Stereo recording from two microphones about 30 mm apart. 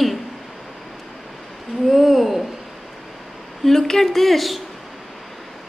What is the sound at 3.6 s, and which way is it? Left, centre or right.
Speech, centre.